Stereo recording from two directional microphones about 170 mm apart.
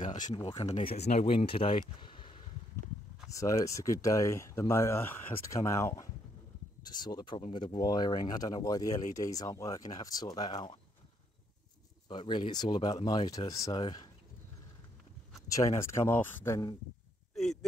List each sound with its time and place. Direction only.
0.0 s speech: 45° left (ahead or behind)
0.4 s speech: 30° left (ahead or behind)
12.1 s speech: 30° left (ahead or behind)
15.4 s speech: 20° left (ahead or behind)
17.4 s a sound: centre (ahead or behind)